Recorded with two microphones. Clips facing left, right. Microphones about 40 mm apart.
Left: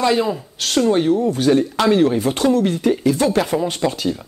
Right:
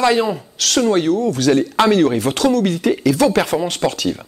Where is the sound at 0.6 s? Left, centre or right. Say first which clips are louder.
Right 3 dB; right.